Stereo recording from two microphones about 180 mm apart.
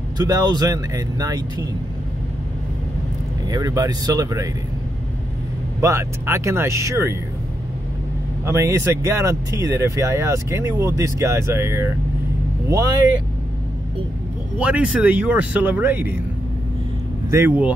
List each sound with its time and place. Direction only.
0.2 s speech: 20° right (ahead or behind)
3.4 s speech: 20° right (ahead or behind)
5.8 s speech: 15° right (ahead or behind)
8.5 s speech: 15° right (ahead or behind)
14.6 s speech: 5° right (ahead or behind)
17.3 s speech: 10° right (ahead or behind)